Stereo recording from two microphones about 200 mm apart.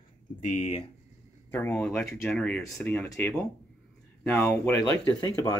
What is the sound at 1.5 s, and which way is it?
Speech, 10° left (ahead or behind).